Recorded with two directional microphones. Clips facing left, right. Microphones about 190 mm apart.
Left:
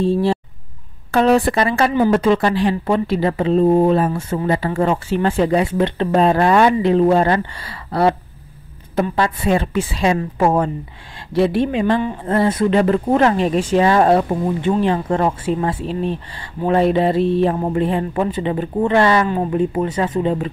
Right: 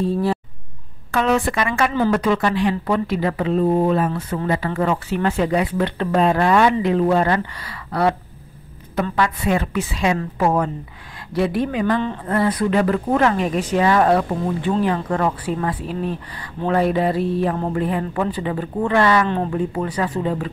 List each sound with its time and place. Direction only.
0.0 s a woman's voice: 30° left (ahead or behind)
19.2 s speech: 5° left (ahead or behind)
19.5 s speech: 20° left (ahead or behind)